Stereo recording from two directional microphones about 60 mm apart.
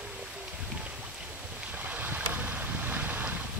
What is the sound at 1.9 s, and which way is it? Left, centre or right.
Boat, right.